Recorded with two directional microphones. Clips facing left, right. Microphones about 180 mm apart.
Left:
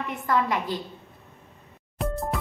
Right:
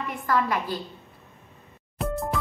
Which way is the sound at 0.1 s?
20° left (ahead or behind).